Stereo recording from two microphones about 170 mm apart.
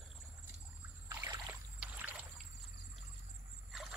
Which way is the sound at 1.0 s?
20° right (ahead or behind).